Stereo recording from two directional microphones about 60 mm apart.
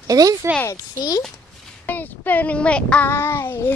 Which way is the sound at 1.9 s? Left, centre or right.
Left.